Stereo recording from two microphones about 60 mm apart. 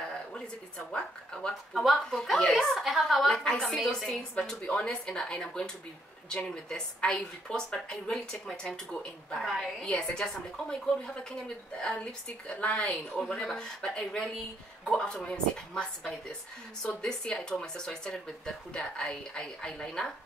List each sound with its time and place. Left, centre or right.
0.9 s speech: centre
1.5 s a woman's voice: centre
3.4 s speech: centre
3.7 s a woman's voice: centre
4.4 s a woman's voice: centre